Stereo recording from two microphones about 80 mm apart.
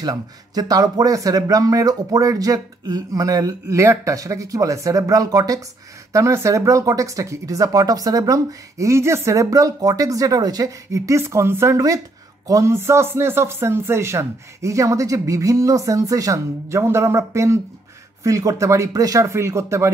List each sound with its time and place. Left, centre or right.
0.0 s speech: right